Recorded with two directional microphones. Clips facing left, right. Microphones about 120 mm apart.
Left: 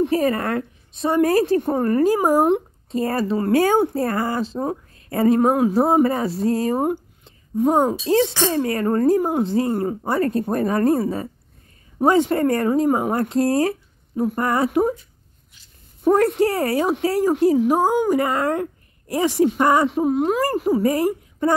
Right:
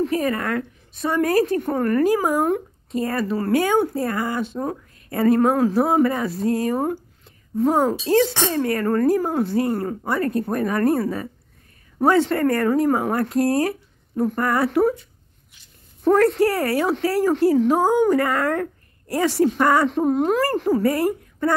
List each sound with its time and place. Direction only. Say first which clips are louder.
0.0 s speech: left 2 dB; 30° left (ahead or behind)
3.5 s a woman's voice: left 2 dB; 35° left (ahead or behind)
12.0 s speech: left 1 dB; 15° left (ahead or behind)
14.1 s speech: even; 10° left (ahead or behind)
16.2 s speech: right 1 dB; 20° left (ahead or behind)
19.9 s speech: even; 5° left (ahead or behind); by 21.5 s 20° left (ahead or behind)